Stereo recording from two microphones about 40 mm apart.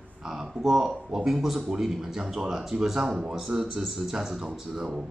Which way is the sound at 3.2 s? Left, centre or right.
Right.